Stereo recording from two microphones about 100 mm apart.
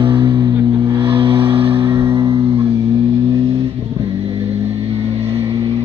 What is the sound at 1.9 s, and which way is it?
Music, 35° right (ahead or behind).